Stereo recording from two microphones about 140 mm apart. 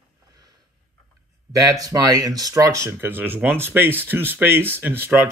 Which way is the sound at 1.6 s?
25° right (ahead or behind).